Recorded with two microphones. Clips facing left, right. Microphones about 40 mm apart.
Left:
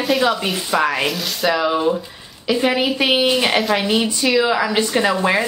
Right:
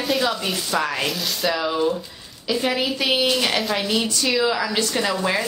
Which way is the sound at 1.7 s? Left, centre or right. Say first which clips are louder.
Left 3 dB; left.